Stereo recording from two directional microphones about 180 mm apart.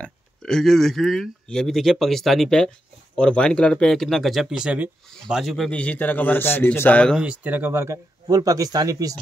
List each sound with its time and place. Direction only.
0.0 s a man's voice: 5° left (ahead or behind)
7.2 s speech: 10° right (ahead or behind)